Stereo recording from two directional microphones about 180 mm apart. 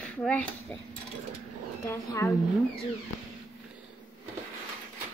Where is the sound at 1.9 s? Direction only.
15° left (ahead or behind).